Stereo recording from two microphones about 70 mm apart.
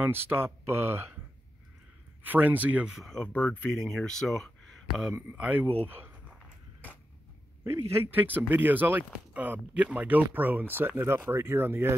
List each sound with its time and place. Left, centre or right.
0.0 s speech: right
2.2 s speech: right
2.9 s speech: centre
3.2 s speech: centre
3.8 s speech: centre
5.4 s speech: right
7.6 s speech: right
8.1 s speech: right